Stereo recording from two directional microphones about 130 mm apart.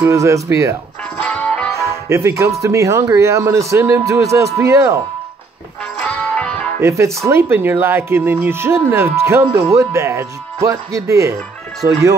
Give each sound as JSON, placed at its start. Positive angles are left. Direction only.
{"t": 0.0, "sound": "speech", "side_deg": -25}
{"t": 1.1, "sound": "music", "side_deg": 5}
{"t": 1.8, "sound": "speech", "side_deg": -20}
{"t": 6.1, "sound": "music", "side_deg": 5}
{"t": 6.8, "sound": "speech", "side_deg": -20}